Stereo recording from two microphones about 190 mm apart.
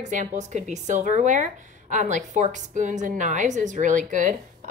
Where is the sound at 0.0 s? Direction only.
40° right (ahead or behind).